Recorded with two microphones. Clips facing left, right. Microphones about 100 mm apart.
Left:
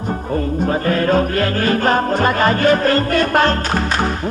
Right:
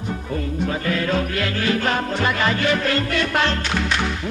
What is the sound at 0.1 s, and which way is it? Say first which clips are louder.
Music: left 6 dB; 40° left (ahead or behind).